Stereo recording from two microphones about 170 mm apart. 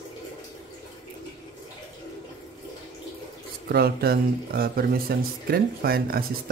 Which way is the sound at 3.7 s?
65° right (ahead or behind).